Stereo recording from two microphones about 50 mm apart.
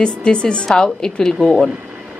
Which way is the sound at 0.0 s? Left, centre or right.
Centre.